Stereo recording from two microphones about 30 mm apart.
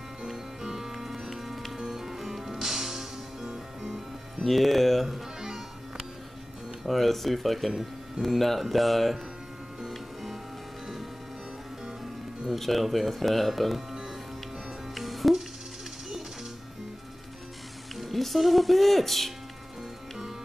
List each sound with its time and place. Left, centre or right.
0.2 s music: centre
1.8 s music: centre
3.4 s music: right
4.5 s speech: centre
5.0 s music: centre
6.9 s speech: centre
8.4 s speech: centre
9.8 s music: centre
12.5 s speech: centre
15.0 s music: centre
17.9 s speech: centre